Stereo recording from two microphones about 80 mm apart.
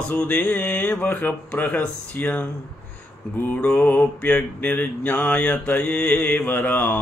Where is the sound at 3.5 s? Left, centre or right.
Centre.